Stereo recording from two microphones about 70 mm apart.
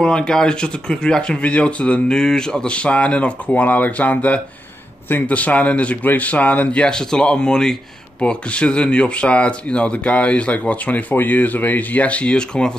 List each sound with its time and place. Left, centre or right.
0.0 s speech: centre